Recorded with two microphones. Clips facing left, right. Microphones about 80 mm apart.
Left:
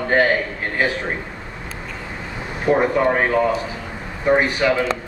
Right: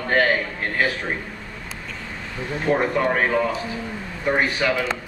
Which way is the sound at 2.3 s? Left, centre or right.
Centre.